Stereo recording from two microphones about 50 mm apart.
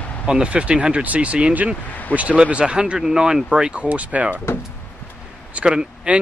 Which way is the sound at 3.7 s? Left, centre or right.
Right.